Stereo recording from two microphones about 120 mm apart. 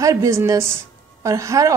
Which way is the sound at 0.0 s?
25° right (ahead or behind).